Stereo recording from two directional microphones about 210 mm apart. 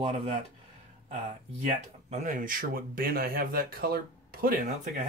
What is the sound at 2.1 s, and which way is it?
Speech, 40° right (ahead or behind).